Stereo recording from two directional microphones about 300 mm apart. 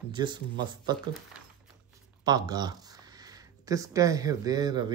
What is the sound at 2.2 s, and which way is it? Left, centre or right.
Speech, centre.